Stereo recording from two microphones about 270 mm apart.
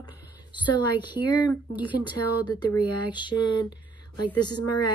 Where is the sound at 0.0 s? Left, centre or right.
Centre.